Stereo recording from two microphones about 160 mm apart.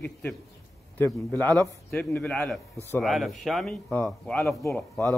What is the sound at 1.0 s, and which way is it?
A man's voice, 10° left (ahead or behind).